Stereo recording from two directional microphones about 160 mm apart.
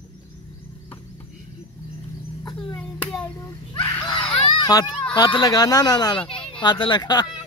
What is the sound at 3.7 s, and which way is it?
Children playing, 30° left (ahead or behind).